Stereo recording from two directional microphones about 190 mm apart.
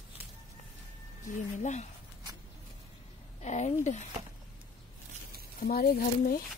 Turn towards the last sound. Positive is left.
turn(degrees=50)  # may be behind; listen again after turning